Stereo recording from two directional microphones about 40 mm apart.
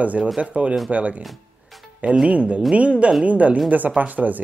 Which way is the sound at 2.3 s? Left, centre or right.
Right.